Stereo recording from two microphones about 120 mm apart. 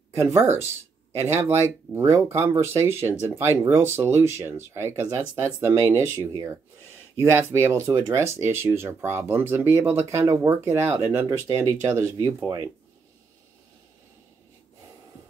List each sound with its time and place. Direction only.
0.1 s speech: 25° right (ahead or behind)
11.2 s speech: 30° right (ahead or behind)